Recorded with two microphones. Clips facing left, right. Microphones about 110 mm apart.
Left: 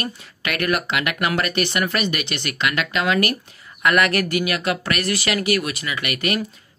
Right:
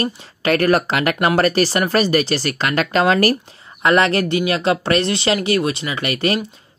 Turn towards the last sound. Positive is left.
turn(degrees=-30)  # may be behind; listen again after turning